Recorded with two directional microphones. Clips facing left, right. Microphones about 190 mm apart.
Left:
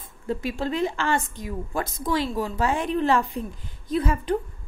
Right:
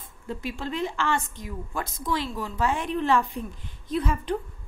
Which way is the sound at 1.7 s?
35° left (ahead or behind).